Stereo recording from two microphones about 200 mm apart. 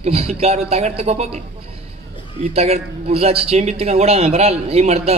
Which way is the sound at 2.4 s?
30° right (ahead or behind).